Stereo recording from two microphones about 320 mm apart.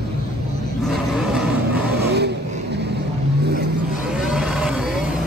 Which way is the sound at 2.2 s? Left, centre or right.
Right.